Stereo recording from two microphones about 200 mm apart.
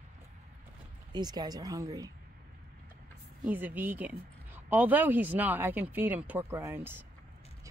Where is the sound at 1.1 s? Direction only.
20° right (ahead or behind).